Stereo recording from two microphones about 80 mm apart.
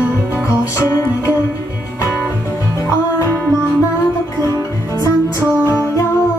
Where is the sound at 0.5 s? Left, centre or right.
Left.